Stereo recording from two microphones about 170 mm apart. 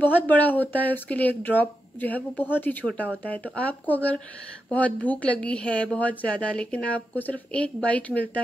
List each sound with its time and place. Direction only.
0.0 s speech: 10° left (ahead or behind)